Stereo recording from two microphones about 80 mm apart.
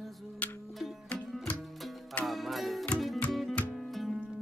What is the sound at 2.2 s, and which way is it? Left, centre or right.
Music, centre.